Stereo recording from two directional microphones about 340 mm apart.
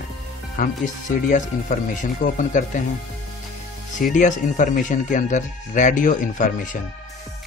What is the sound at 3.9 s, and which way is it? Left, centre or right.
Speech, left.